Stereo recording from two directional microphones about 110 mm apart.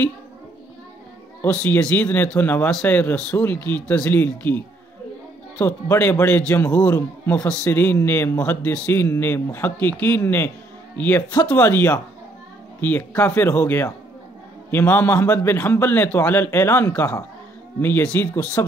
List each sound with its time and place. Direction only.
1.5 s a man's voice: 10° left (ahead or behind)